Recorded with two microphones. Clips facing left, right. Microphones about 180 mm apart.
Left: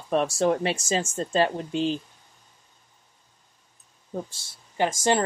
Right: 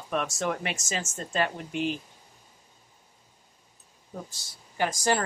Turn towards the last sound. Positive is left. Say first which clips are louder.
# left 3 dB
turn(degrees=25)  # may be behind; listen again after turning